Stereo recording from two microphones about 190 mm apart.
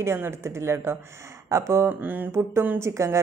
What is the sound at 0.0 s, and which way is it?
Speech, 15° right (ahead or behind).